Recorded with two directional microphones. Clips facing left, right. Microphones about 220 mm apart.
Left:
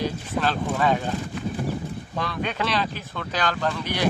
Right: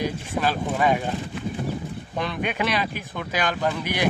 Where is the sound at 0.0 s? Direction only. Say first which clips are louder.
Even; 10° right (ahead or behind).